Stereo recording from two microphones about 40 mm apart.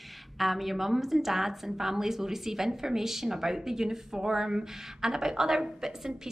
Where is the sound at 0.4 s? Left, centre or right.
Centre.